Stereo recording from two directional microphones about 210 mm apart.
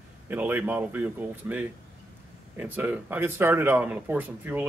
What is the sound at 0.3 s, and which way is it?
Speech, 10° right (ahead or behind).